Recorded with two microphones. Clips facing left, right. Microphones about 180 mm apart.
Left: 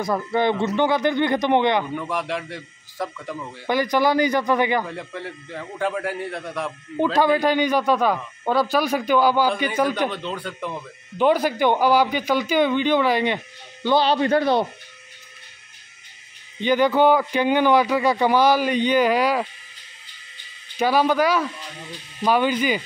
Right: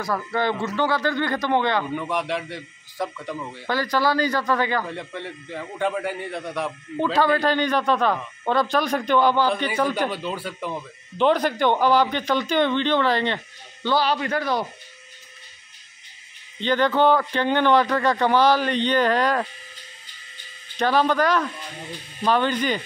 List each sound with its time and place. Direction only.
0.0 s speech: 20° left (ahead or behind)
2.0 s a man's voice: centre (ahead or behind)
3.6 s speech: 15° left (ahead or behind)
4.8 s a man's voice: centre (ahead or behind)
7.2 s speech: 10° left (ahead or behind)
9.9 s a man's voice: 5° right (ahead or behind)
11.1 s speech: 5° left (ahead or behind)
13.8 s speech: 25° left (ahead or behind)
16.6 s speech: 10° left (ahead or behind)
20.7 s speech: 10° left (ahead or behind)